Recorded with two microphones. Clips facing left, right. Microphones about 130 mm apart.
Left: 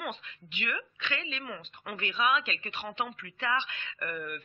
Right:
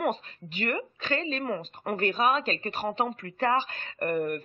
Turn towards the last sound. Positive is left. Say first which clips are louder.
# right 10 dB
turn(degrees=-45)  # may be behind; listen again after turning